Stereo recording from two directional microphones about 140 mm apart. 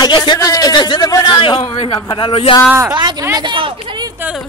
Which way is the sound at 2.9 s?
30° right (ahead or behind).